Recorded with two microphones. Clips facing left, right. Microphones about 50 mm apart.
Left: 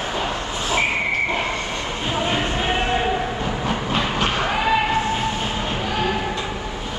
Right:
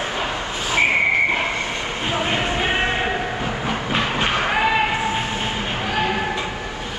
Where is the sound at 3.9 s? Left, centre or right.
Centre.